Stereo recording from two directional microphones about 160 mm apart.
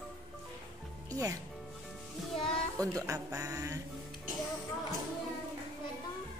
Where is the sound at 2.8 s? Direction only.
20° right (ahead or behind).